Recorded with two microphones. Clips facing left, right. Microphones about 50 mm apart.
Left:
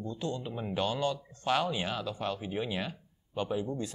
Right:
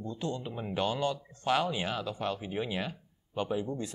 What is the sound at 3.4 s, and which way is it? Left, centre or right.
Speech, centre.